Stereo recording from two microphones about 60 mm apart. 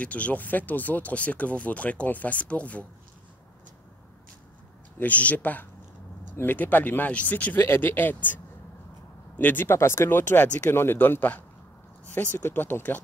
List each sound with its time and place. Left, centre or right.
0.0 s speech: left
5.0 s speech: left
7.5 s speech: left
9.4 s speech: left